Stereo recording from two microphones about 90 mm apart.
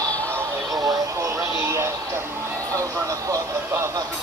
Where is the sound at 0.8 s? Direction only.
35° right (ahead or behind).